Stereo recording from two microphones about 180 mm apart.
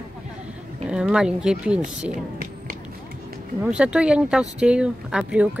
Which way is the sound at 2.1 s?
50° right (ahead or behind).